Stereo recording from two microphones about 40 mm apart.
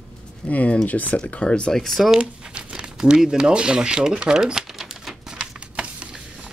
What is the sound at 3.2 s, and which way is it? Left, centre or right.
Speech, centre.